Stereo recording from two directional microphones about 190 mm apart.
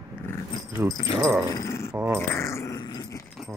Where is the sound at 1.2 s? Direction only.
5° right (ahead or behind).